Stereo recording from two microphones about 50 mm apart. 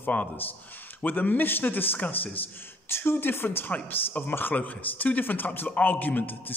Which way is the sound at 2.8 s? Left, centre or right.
Left.